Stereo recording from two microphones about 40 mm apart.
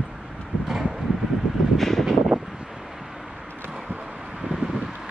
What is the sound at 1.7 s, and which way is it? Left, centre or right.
Vehicle, centre.